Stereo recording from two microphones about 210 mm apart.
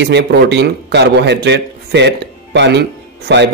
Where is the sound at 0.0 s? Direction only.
55° right (ahead or behind).